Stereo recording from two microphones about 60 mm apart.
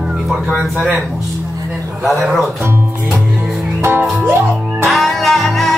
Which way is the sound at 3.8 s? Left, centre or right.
Right.